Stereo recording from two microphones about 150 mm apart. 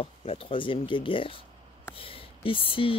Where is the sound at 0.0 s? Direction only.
40° left (ahead or behind).